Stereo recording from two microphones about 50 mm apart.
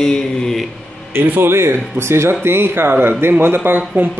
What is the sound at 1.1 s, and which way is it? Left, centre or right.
Speech, right.